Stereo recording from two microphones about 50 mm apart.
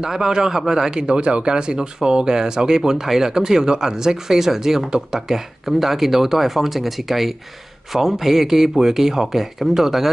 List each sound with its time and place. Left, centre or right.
0.0 s a man's voice: centre